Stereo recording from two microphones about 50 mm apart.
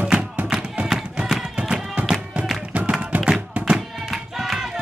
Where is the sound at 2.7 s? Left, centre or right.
Right.